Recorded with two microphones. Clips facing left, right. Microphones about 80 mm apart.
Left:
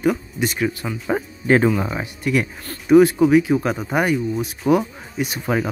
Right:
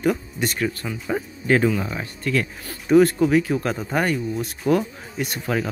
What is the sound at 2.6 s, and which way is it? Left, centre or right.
Speech, centre.